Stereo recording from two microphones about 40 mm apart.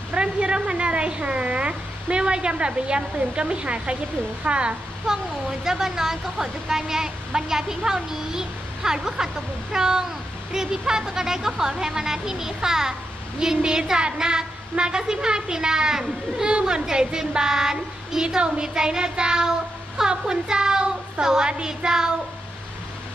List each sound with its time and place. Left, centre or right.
0.1 s a woman's voice: right
5.0 s a woman's voice: centre